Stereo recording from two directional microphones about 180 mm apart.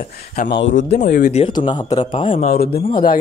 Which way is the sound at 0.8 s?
40° left (ahead or behind).